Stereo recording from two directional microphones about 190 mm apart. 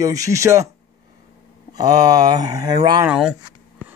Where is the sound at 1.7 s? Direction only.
20° right (ahead or behind).